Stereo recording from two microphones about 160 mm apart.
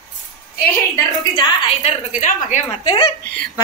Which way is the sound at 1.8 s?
50° left (ahead or behind).